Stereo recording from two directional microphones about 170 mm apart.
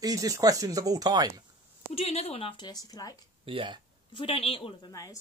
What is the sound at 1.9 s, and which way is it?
Speech, 35° left (ahead or behind).